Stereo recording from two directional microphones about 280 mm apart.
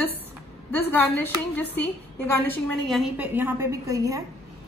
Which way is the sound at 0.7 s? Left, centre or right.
Centre.